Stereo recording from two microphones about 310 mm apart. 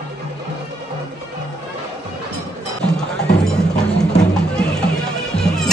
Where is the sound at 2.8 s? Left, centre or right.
Centre.